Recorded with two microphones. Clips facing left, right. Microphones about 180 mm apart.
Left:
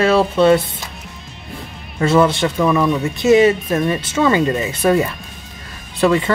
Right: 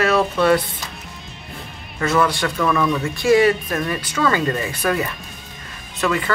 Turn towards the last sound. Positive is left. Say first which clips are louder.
# left 6 dB
turn(degrees=30)  # may be behind; listen again after turning